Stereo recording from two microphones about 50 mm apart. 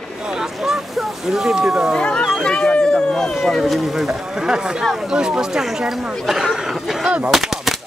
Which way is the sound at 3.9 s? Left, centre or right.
Centre.